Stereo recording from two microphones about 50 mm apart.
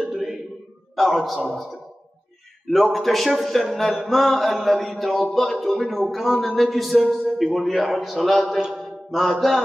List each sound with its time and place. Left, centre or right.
0.1 s a sound: centre
0.9 s a man's voice: centre
8.7 s mantra: centre